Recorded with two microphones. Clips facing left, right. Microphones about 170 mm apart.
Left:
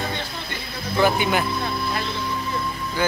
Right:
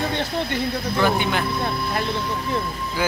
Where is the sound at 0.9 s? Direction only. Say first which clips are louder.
Left 3 dB; 10° left (ahead or behind).